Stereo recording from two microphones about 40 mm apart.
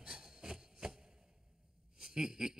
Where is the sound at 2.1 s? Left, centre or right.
Centre.